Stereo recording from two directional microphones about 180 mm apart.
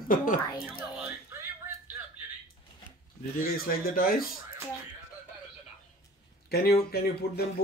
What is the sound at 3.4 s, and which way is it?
Speech, 55° left (ahead or behind).